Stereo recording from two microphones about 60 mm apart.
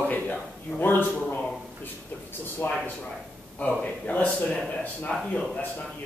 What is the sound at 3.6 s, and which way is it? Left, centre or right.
A man's voice, left.